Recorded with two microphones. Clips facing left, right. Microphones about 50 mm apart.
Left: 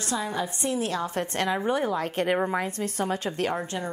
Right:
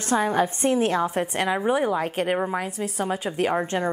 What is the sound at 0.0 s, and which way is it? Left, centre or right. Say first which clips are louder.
A woman's voice: right 7 dB; right.